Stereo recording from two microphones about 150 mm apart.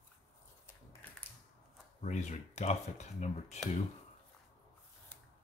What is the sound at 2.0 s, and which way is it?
Speech, 50° left (ahead or behind).